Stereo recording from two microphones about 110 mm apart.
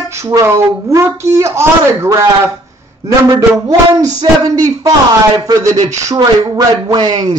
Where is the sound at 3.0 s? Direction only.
35° right (ahead or behind).